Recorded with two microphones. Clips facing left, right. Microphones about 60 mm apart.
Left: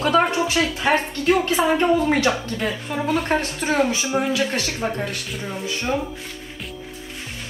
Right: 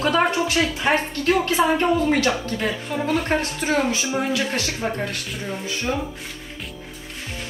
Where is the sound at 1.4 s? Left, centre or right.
Left.